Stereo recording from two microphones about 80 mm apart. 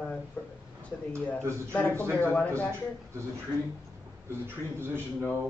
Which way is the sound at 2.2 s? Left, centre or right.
Centre.